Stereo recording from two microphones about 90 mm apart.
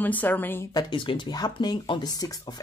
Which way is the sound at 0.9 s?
65° left (ahead or behind).